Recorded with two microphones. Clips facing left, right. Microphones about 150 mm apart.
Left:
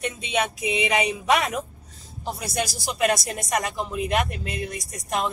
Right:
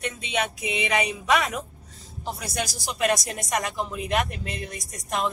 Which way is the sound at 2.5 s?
5° left (ahead or behind).